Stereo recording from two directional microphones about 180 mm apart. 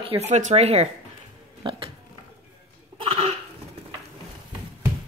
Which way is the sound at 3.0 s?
30° right (ahead or behind).